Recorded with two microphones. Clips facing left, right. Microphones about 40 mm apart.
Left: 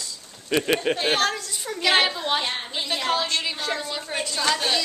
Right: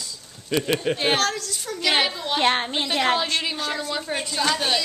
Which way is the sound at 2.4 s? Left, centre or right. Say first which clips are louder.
Right 7 dB; right.